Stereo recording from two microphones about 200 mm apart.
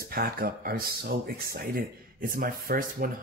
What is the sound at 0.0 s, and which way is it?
Speech, 50° right (ahead or behind).